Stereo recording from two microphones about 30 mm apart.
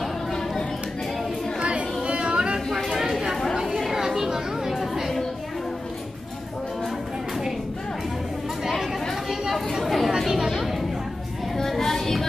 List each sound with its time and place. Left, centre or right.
1.6 s chatter: right
2.7 s chatter: centre
9.8 s chatter: centre
10.5 s a sound: centre
11.8 s music: centre